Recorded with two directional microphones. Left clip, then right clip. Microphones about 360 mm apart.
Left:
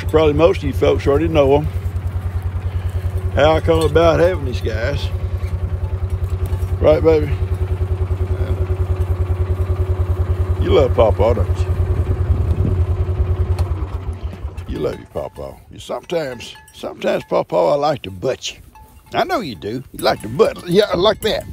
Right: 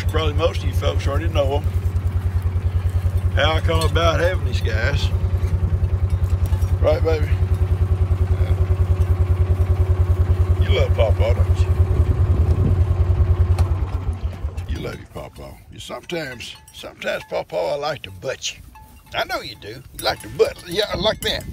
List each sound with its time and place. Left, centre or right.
0.1 s speech: centre
3.3 s speech: centre
6.9 s speech: centre
10.6 s speech: centre
14.7 s a sound: centre
15.9 s speech: centre